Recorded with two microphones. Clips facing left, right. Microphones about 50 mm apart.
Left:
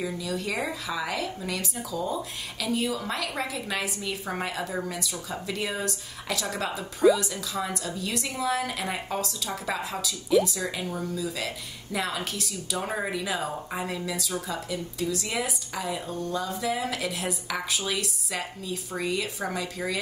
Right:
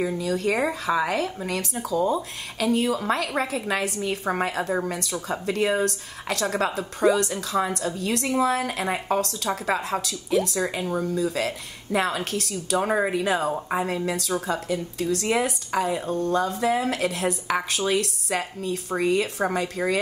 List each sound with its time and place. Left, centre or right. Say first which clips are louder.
0.0 s a woman's voice: right 6 dB; right
12.7 s a woman's voice: right 8 dB; right